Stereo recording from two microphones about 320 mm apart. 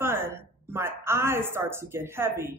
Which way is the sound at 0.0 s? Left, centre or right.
Centre.